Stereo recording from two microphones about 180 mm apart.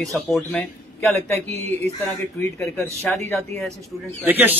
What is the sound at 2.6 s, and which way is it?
Speech, 10° left (ahead or behind).